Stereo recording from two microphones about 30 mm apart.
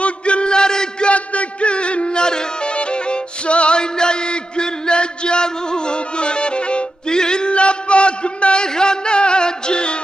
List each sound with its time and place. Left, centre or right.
0.0 s chant: left
1.0 s music: left
7.5 s music: left
8.6 s music: left